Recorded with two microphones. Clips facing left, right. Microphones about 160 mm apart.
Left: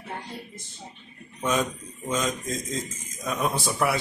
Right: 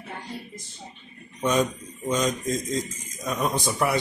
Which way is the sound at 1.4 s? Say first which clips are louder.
Right 3 dB; centre (ahead or behind).